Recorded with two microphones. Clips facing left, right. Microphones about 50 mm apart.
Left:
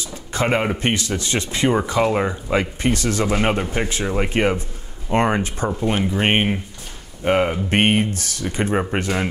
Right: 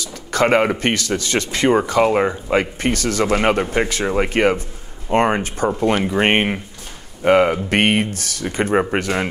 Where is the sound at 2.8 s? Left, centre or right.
Right.